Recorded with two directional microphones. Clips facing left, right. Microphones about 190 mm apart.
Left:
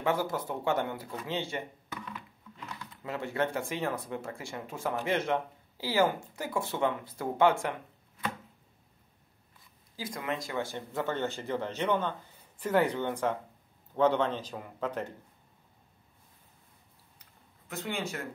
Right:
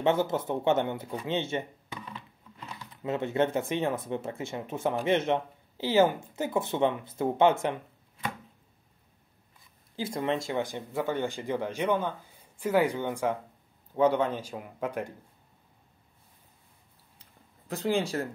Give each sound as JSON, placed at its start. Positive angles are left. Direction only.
{"t": 0.0, "sound": "speech", "side_deg": -25}
{"t": 3.0, "sound": "speech", "side_deg": -20}
{"t": 9.9, "sound": "speech", "side_deg": -30}
{"t": 17.6, "sound": "speech", "side_deg": -35}